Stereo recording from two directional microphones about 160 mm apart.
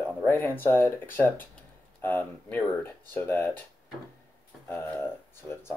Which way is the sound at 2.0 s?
10° left (ahead or behind).